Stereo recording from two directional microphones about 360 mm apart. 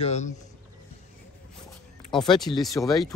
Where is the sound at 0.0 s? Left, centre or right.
Centre.